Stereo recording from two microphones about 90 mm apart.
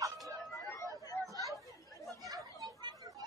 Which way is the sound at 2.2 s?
45° right (ahead or behind).